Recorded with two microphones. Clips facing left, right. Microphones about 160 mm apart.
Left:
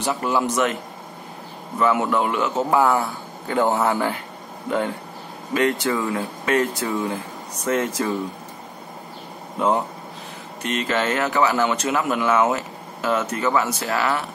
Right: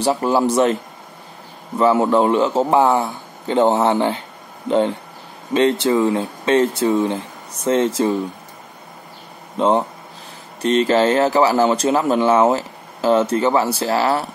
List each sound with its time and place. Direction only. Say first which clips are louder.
0.0 s speech: right 5 dB; 30° right (ahead or behind)
1.8 s a man's voice: right 5 dB; 30° right (ahead or behind)
9.6 s a man's voice: right 4 dB; 25° right (ahead or behind)